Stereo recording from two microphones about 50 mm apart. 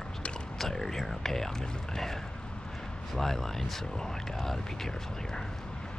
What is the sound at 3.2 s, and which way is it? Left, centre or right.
Speech, centre.